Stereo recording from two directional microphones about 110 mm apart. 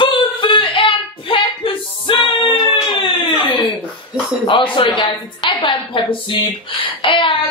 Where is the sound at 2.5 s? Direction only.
55° left (ahead or behind).